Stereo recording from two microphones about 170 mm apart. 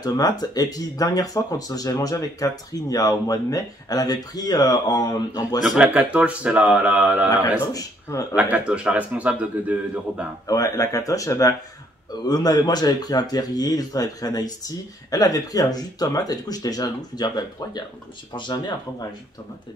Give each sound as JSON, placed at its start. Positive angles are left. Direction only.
{"t": 0.0, "sound": "speech", "side_deg": 25}
{"t": 5.6, "sound": "a man's voice", "side_deg": -5}
{"t": 7.7, "sound": "speech", "side_deg": 20}
{"t": 8.4, "sound": "a man's voice", "side_deg": -5}
{"t": 10.4, "sound": "speech", "side_deg": 20}